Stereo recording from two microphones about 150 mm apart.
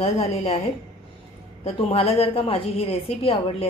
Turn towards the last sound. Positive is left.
turn(degrees=40)  # may be behind; listen again after turning